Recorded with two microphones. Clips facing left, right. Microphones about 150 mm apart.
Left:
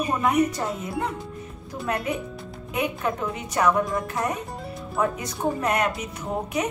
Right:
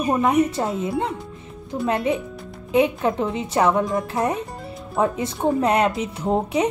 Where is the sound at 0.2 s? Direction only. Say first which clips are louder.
Right 3 dB; 25° right (ahead or behind).